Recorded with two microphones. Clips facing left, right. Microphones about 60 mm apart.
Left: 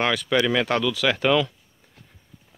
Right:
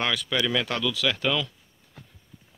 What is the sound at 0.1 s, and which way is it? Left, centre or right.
Speech, left.